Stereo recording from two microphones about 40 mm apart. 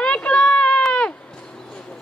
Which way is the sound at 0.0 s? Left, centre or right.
Left.